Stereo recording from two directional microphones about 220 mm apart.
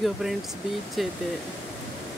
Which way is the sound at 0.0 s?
Centre (ahead or behind).